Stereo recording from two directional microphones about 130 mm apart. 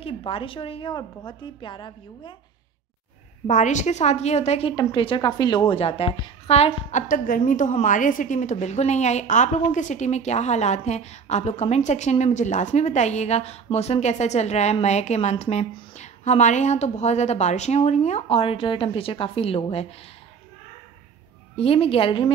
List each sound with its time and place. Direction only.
0.0 s a woman's voice: 45° left (ahead or behind)
3.4 s a woman's voice: 65° left (ahead or behind); by 4.7 s 50° left (ahead or behind)
4.7 s a woman's voice: 40° left (ahead or behind)
21.5 s a woman's voice: 50° left (ahead or behind)